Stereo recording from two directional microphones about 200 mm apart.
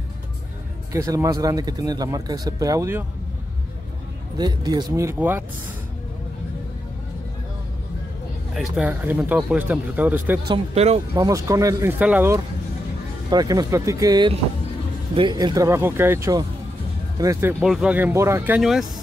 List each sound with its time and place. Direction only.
0.9 s speech: 15° right (ahead or behind)
4.4 s speech: 20° right (ahead or behind)
8.5 s speech: 5° right (ahead or behind)
10.5 s speech: 30° right (ahead or behind)
11.1 s speech: 15° right (ahead or behind)
17.6 s speech: centre (ahead or behind)